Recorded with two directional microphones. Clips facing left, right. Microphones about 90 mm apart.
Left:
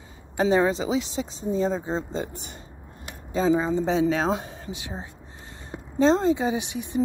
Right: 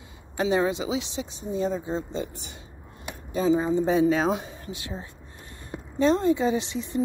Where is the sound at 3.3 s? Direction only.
30° left (ahead or behind).